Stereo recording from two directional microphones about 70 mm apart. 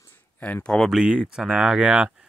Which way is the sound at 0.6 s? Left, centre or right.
Centre.